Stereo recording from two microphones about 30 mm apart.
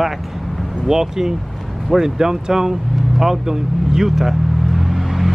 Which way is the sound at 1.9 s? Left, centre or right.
Centre.